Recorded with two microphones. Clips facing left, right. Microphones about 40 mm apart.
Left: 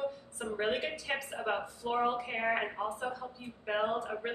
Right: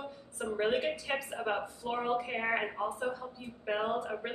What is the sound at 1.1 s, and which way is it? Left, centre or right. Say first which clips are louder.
Female singing: even; centre.